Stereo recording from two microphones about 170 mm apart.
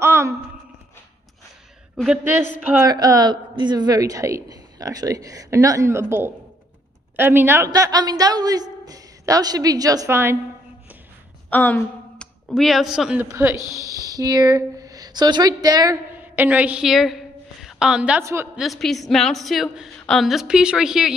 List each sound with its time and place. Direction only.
0.0 s a sound: 15° right (ahead or behind)
2.8 s a woman's voice: 20° right (ahead or behind)
11.5 s a man's voice: 10° left (ahead or behind); by 18.5 s 15° right (ahead or behind)
18.6 s a woman's voice: centre (ahead or behind)